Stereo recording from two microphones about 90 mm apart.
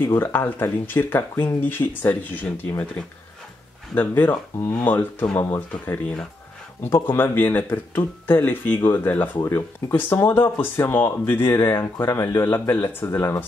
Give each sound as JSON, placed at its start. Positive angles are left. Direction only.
{"t": 0.0, "sound": "speech", "side_deg": 25}
{"t": 3.9, "sound": "speech", "side_deg": 20}